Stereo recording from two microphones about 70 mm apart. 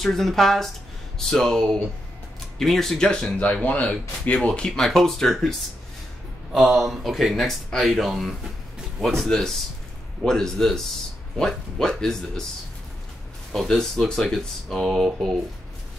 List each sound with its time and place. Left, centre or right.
0.0 s speech: centre
3.1 s speech: centre
13.5 s speech: centre